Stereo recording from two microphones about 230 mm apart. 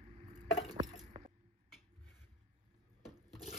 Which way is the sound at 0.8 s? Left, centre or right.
Right.